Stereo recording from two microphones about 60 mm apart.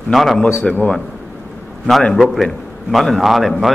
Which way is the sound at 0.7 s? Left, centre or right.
Centre.